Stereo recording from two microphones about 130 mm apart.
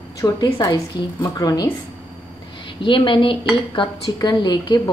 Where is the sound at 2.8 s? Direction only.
40° left (ahead or behind).